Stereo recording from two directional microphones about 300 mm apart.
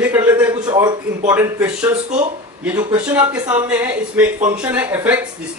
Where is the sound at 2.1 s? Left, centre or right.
Right.